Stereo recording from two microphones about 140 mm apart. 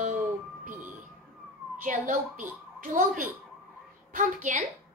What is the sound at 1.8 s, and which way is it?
A woman's voice, 65° right (ahead or behind).